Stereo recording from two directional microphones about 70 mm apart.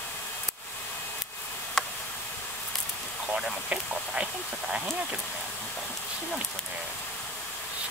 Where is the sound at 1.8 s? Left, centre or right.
Centre.